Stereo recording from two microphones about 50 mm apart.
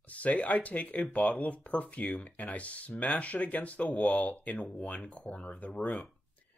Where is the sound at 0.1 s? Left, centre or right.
Left.